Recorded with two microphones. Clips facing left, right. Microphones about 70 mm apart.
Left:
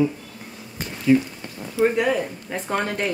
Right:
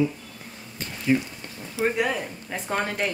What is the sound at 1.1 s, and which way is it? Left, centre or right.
Speech, right.